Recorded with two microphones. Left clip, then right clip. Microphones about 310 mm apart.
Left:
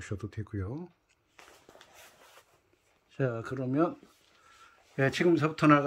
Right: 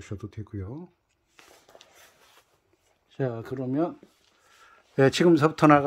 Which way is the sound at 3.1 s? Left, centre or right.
Centre.